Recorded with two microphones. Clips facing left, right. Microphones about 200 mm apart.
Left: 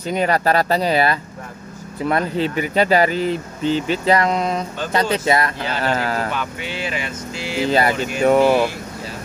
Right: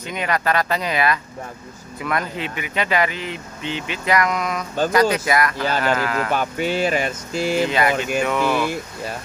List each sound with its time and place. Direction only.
0.0 s speech: 35° left (ahead or behind)
6.3 s speech: 45° right (ahead or behind)
7.7 s speech: 35° left (ahead or behind)